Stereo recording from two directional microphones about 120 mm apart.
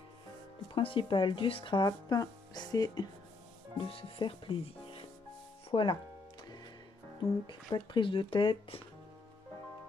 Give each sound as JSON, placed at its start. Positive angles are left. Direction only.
{"t": 0.7, "sound": "speech", "side_deg": 45}
{"t": 3.7, "sound": "speech", "side_deg": 45}
{"t": 7.4, "sound": "speech", "side_deg": 40}